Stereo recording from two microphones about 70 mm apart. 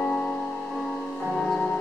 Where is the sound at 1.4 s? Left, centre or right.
Centre.